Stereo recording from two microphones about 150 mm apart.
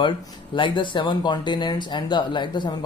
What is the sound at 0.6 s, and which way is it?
Speech, 30° left (ahead or behind).